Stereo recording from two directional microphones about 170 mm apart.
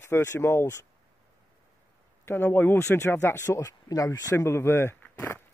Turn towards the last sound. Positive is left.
turn(degrees=15)  # may be behind; listen again after turning